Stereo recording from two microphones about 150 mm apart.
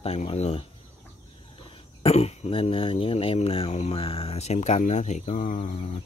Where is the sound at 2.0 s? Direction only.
45° left (ahead or behind).